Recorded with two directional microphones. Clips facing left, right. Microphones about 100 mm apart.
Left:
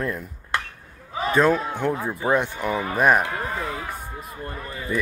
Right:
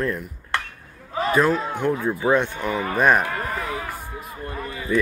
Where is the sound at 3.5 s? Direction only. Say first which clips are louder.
Right 1 dB; centre (ahead or behind).